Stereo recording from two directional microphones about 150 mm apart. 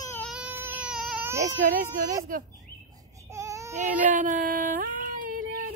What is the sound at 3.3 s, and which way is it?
Baby cry, 20° right (ahead or behind).